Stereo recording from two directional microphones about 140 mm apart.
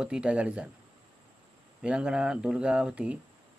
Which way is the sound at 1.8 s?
5° right (ahead or behind).